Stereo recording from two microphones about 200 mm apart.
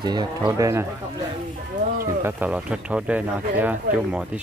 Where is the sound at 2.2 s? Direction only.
5° right (ahead or behind).